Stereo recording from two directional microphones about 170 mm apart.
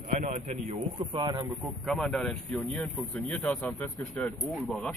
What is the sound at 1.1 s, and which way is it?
Speech, 30° right (ahead or behind).